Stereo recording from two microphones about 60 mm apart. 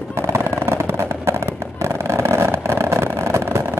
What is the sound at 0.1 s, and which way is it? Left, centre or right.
Fireworks, right.